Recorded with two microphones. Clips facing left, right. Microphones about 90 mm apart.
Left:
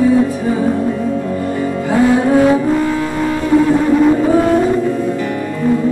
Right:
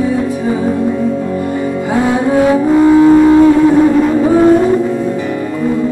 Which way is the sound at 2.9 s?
20° right (ahead or behind).